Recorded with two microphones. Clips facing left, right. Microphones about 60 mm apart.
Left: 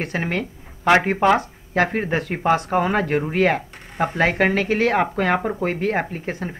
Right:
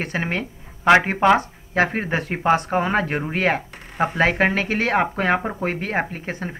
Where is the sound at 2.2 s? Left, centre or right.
Right.